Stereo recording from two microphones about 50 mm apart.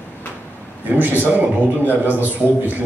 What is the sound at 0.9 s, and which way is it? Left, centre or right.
A man's voice, right.